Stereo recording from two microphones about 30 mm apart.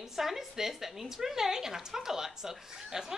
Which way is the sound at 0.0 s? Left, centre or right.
Centre.